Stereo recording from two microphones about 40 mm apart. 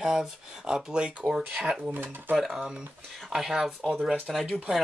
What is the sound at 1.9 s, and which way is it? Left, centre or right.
Speech, right.